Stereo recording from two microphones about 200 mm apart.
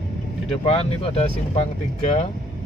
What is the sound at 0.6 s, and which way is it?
Speech, 30° left (ahead or behind).